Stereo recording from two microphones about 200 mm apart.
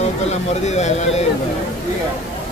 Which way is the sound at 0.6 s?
35° left (ahead or behind).